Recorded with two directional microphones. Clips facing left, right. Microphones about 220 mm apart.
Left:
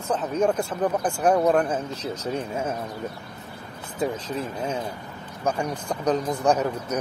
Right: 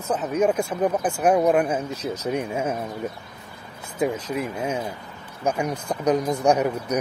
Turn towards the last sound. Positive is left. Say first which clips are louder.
# right 2 dB
turn(degrees=-15)  # may be behind; listen again after turning